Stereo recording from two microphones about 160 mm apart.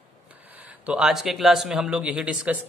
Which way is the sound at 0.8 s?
5° right (ahead or behind).